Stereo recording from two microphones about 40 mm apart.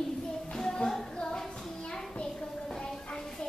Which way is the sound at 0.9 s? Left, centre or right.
Centre.